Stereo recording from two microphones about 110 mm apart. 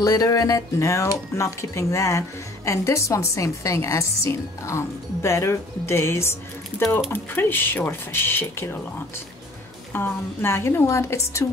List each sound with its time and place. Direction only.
0.0 s speech: 35° left (ahead or behind)
9.9 s speech: 20° left (ahead or behind)